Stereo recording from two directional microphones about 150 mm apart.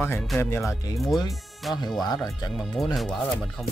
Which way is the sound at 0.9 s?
Centre (ahead or behind).